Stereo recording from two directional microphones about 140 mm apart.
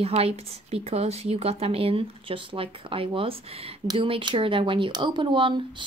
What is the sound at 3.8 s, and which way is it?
Speech, 35° right (ahead or behind).